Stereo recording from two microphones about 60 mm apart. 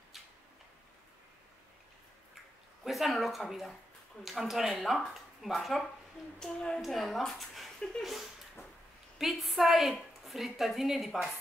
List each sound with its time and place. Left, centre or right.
2.8 s a woman's voice: centre
6.4 s a child's voice: centre
6.8 s a woman's voice: centre